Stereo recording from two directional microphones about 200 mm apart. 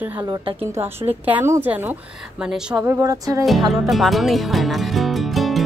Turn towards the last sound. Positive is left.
turn(degrees=0)  # may be behind; listen again after turning